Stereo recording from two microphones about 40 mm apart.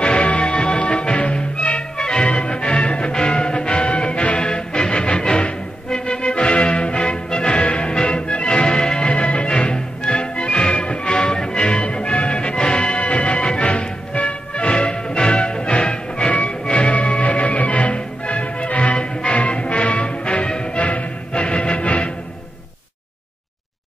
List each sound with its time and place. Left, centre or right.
0.0 s music: left